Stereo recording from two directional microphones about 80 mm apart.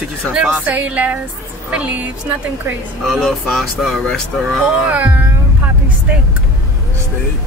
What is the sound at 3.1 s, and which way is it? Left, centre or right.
Speech, centre.